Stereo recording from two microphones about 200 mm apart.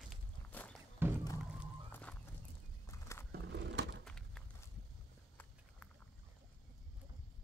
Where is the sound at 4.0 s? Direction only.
Centre (ahead or behind).